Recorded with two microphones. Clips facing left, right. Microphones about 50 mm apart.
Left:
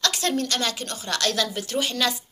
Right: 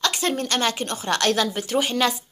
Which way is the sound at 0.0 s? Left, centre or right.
Right.